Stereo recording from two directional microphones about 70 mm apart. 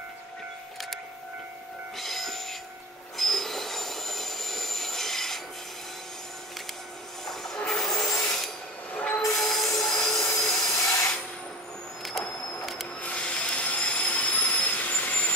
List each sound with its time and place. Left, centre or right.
2.0 s train: centre
3.2 s train wheels squealing: centre
7.2 s train: centre
8.9 s train wheels squealing: centre
9.3 s train wheels squealing: centre
10.0 s a sound: centre
10.7 s rub: left
12.0 s vehicle: centre
13.0 s train: centre